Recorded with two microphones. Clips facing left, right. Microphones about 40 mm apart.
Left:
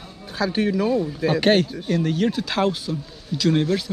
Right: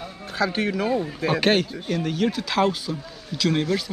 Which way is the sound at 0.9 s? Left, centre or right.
Right.